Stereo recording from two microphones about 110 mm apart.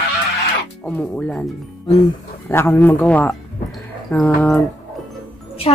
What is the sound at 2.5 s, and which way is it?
Speech, 20° left (ahead or behind).